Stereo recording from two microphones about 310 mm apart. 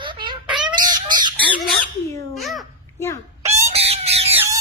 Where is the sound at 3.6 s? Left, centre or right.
Centre.